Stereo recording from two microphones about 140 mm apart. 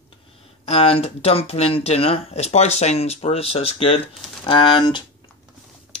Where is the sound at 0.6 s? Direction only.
45° left (ahead or behind).